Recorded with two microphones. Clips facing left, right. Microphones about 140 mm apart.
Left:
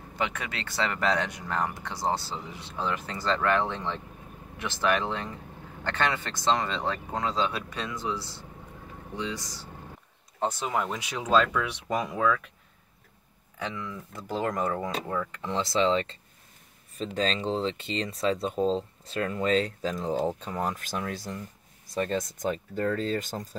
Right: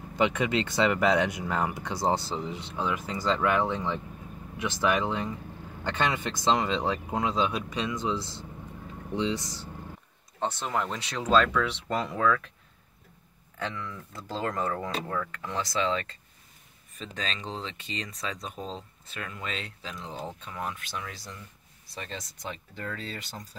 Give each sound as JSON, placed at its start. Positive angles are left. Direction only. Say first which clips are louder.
{"t": 0.1, "sound": "speech", "louder": "right 7 dB", "side_deg": -20}
{"t": 10.4, "sound": "speech", "louder": "left 1 dB", "side_deg": 5}
{"t": 13.6, "sound": "speech", "louder": "even", "side_deg": 10}
{"t": 15.4, "sound": "speech", "louder": "left 5 dB", "side_deg": 25}